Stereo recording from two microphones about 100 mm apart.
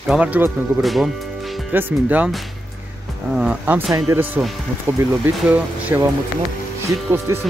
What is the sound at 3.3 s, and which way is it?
Speech, 20° right (ahead or behind).